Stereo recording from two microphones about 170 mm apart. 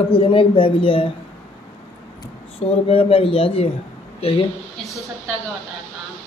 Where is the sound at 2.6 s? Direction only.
35° left (ahead or behind).